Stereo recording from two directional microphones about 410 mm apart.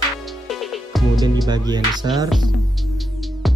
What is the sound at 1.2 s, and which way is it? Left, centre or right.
Speech, centre.